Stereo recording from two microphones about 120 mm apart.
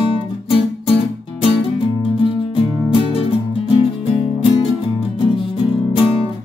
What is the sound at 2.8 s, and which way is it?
Music, 50° left (ahead or behind).